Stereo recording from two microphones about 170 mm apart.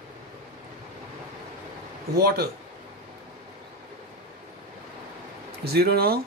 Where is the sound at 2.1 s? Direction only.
65° right (ahead or behind).